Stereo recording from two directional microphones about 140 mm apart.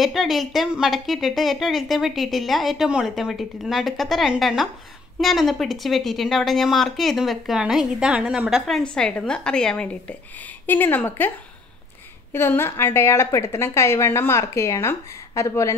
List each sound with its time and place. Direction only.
0.0 s a woman's voice: centre (ahead or behind); by 15.7 s 20° left (ahead or behind)